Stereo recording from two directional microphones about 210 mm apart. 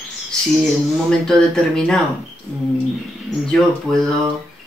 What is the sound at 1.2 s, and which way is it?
Speech, 5° left (ahead or behind).